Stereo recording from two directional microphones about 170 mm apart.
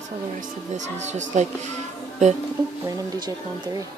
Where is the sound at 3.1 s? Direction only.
25° right (ahead or behind).